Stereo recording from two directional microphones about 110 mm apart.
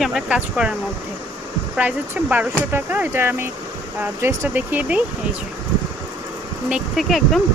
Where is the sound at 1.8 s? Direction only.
15° right (ahead or behind).